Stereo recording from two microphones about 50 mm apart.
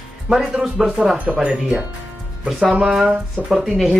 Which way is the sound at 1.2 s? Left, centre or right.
Right.